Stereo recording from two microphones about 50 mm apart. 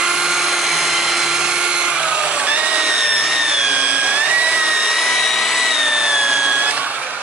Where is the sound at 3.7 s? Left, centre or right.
Right.